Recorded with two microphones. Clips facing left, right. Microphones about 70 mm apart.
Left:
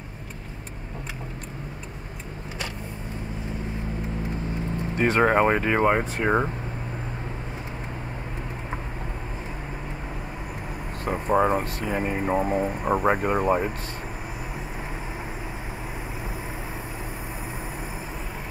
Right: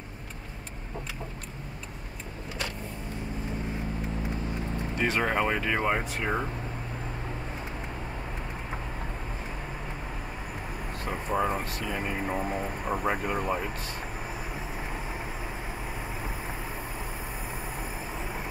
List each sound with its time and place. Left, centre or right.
4.9 s speech: left
11.1 s speech: left